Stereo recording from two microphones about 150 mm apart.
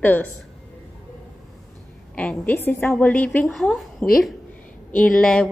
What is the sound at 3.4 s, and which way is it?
Speech, centre (ahead or behind).